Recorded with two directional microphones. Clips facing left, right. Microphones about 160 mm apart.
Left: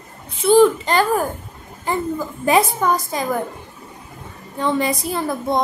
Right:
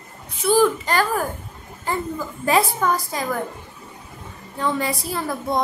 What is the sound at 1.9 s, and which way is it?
A woman's voice, 20° left (ahead or behind).